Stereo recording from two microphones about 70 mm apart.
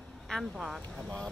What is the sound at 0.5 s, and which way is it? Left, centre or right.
Speech, centre.